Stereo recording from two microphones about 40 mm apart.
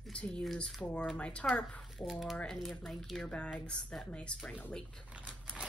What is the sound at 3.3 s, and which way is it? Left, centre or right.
Speech, left.